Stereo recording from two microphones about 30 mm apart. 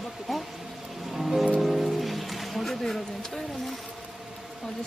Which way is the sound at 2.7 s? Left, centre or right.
Centre.